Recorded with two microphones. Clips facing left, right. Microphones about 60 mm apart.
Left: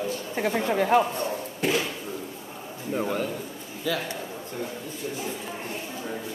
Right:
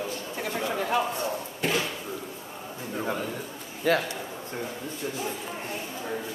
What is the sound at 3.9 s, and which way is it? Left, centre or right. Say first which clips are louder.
Speech: right 5 dB; right.